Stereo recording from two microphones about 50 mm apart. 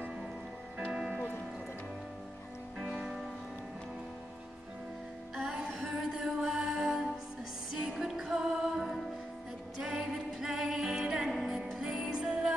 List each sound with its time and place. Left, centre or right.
0.8 s music: centre
2.8 s music: centre
5.3 s music: centre